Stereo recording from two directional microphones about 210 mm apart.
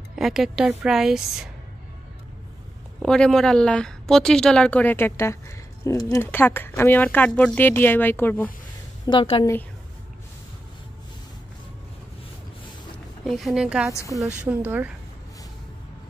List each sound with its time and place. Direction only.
0.1 s a woman's voice: centre (ahead or behind)
3.0 s a woman's voice: 5° left (ahead or behind)
9.0 s a woman's voice: 25° left (ahead or behind)
13.2 s a woman's voice: centre (ahead or behind)